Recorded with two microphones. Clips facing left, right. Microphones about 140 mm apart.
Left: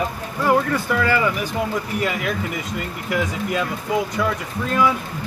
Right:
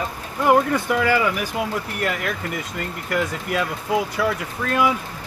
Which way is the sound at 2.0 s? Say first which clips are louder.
Even; centre (ahead or behind).